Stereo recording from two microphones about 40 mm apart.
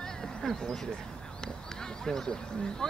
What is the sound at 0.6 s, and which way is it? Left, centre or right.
Speech, centre.